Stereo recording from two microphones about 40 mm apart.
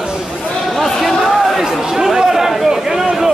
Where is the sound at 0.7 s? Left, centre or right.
Centre.